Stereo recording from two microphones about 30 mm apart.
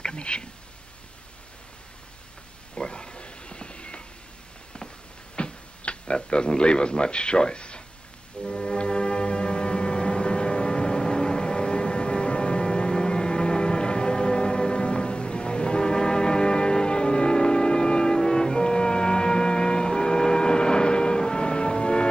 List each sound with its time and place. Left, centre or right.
0.0 s speech: left
2.7 s a sound: left
5.3 s tick-tock: left
6.1 s speech: left
8.5 s music: left